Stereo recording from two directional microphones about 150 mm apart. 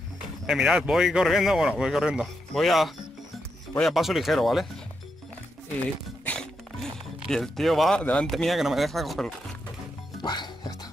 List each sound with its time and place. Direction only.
0.5 s speech: 5° right (ahead or behind)
6.2 s music: 5° left (ahead or behind)
7.2 s speech: 5° left (ahead or behind)
10.2 s music: 30° left (ahead or behind)